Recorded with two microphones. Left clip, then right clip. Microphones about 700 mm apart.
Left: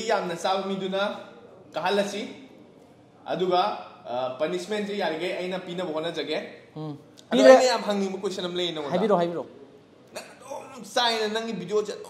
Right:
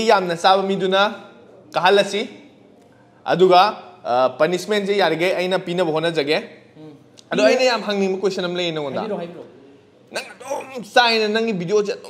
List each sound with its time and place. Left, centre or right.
0.0 s a man's voice: right
3.3 s a man's voice: right
10.1 s a man's voice: right